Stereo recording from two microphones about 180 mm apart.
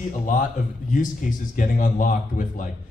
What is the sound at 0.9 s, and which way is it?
Speech, 45° left (ahead or behind).